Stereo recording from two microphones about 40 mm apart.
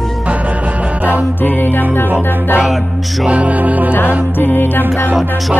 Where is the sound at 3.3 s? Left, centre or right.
Right.